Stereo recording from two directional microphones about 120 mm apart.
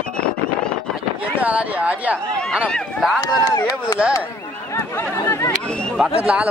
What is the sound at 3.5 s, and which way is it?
Speech, 25° left (ahead or behind).